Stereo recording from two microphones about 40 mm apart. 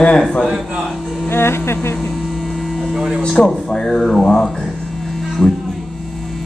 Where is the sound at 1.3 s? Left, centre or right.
Left.